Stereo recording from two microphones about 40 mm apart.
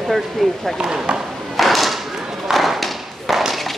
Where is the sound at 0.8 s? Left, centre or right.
Centre.